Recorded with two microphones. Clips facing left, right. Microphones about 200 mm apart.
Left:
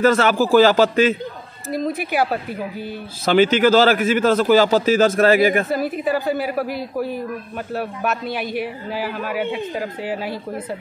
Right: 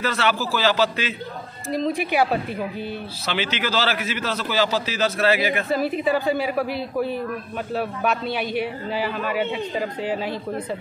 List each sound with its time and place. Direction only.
0.0 s a man's voice: 45° left (ahead or behind)
1.7 s a woman's voice: centre (ahead or behind)
3.3 s a man's voice: 45° left (ahead or behind)
5.8 s a woman's voice: centre (ahead or behind)
7.7 s a woman's voice: 5° left (ahead or behind)